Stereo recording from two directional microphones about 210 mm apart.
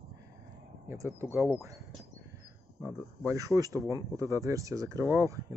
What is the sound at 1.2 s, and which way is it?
Speech, 15° right (ahead or behind).